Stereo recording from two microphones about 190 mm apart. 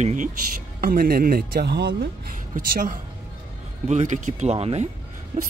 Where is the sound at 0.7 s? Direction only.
50° right (ahead or behind).